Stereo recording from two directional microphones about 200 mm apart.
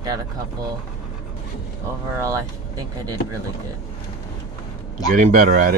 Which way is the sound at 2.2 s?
15° right (ahead or behind).